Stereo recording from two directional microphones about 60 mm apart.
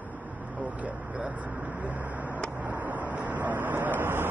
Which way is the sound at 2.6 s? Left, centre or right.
Right.